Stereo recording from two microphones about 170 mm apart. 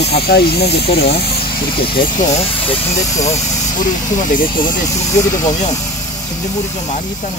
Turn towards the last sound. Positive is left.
turn(degrees=20)  # may be behind; listen again after turning